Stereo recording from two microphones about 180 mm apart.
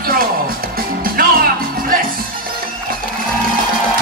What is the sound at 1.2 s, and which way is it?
Music, 55° right (ahead or behind).